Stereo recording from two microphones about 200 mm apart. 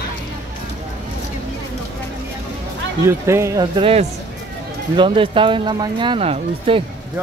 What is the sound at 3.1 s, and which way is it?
Speech, 15° right (ahead or behind).